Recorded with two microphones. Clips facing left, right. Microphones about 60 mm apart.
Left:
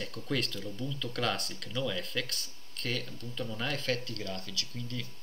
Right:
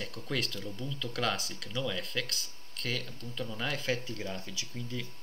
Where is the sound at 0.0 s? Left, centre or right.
Centre.